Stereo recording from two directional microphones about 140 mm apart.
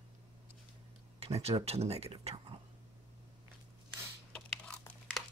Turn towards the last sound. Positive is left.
turn(degrees=5)  # may be behind; listen again after turning